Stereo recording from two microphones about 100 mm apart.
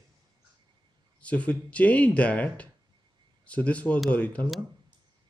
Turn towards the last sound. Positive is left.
turn(degrees=15)  # may be behind; listen again after turning